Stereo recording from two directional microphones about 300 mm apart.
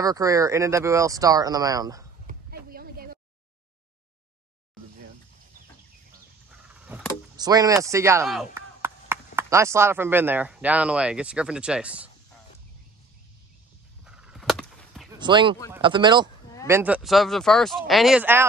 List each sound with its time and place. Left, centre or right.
0.0 s speech: centre
2.2 s a sound: right
6.9 s vehicle: centre
7.3 s speech: centre
14.0 s a sound: centre
15.1 s speech: centre